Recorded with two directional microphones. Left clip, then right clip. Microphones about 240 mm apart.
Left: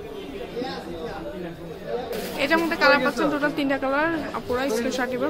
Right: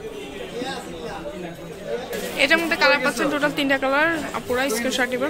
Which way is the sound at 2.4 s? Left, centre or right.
Centre.